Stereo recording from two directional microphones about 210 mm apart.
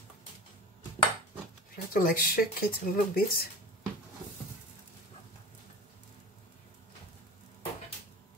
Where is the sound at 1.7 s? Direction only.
40° left (ahead or behind).